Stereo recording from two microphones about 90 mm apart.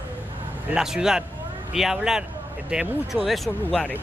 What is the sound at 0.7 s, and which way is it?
Speech, 5° right (ahead or behind).